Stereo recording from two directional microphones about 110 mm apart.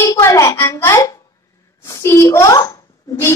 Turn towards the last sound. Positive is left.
turn(degrees=30)  # may be behind; listen again after turning